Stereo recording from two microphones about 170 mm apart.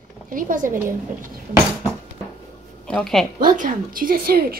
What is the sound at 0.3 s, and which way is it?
Speech, 55° right (ahead or behind).